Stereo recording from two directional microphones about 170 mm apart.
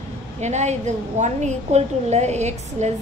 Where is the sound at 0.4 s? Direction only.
40° right (ahead or behind).